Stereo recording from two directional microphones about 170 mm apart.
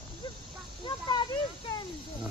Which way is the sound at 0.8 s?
25° left (ahead or behind).